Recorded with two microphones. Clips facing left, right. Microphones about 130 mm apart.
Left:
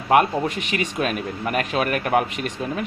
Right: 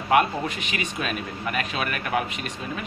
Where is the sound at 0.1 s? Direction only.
50° left (ahead or behind).